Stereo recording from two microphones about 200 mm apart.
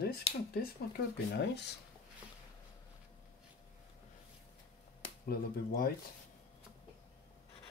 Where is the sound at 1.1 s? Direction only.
55° left (ahead or behind).